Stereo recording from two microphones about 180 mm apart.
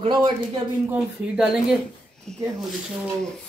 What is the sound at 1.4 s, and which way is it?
Speech, 5° right (ahead or behind).